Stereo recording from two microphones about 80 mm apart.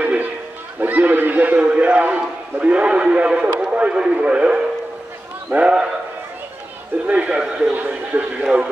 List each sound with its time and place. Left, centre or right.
0.0 s a sound: right
3.5 s speech: centre
7.1 s speech: centre